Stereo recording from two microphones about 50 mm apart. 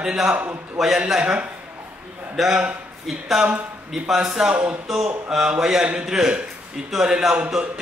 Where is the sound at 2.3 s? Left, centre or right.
Centre.